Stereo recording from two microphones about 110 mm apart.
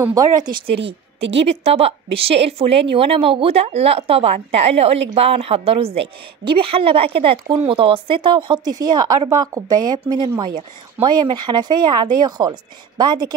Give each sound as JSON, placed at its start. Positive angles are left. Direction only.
{"t": 0.0, "sound": "speech", "side_deg": -35}
{"t": 0.7, "sound": "a woman's voice", "side_deg": -60}